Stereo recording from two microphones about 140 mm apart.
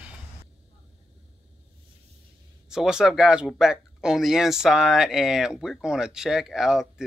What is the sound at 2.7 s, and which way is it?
Speech, 5° right (ahead or behind).